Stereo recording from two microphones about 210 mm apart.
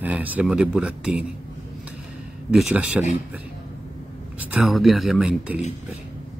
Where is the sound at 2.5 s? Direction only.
5° right (ahead or behind).